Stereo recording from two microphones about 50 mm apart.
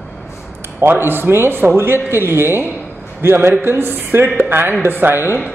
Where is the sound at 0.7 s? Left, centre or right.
Right.